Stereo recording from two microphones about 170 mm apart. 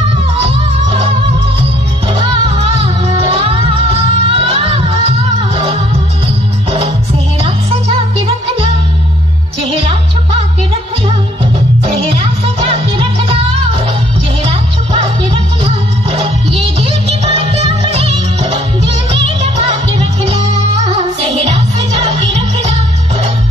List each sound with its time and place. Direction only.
0.8 s music: 35° right (ahead or behind)
2.1 s music: 35° right (ahead or behind)
12.6 s music: 35° right (ahead or behind)